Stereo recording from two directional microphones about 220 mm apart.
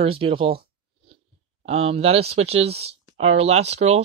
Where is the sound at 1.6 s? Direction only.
25° right (ahead or behind).